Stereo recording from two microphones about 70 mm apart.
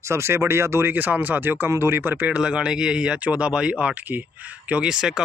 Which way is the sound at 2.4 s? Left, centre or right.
Centre.